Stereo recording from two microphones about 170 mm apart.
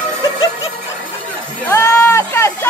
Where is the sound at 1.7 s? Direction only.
15° left (ahead or behind).